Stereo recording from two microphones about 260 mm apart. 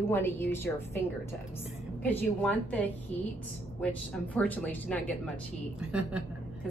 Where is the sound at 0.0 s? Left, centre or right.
Centre.